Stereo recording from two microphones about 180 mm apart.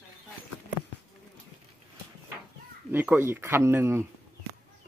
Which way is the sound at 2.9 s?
10° right (ahead or behind).